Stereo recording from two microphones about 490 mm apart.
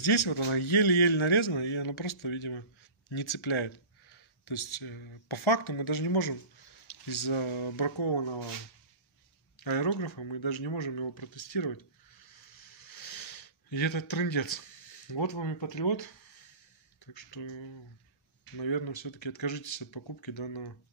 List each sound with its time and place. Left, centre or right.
0.0 s speech: left
9.6 s speech: left